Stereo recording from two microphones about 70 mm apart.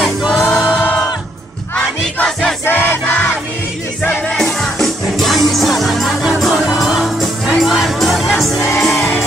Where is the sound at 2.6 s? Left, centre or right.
Left.